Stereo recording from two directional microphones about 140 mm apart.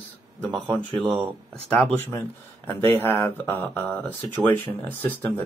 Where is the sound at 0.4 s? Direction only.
10° left (ahead or behind).